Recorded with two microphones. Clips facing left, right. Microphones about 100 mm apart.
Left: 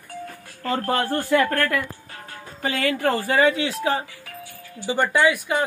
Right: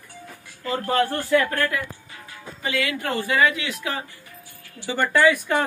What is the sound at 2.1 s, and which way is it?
Speech, 45° left (ahead or behind).